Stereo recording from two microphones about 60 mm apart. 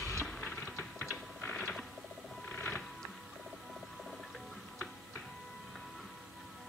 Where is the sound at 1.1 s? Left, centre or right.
Centre.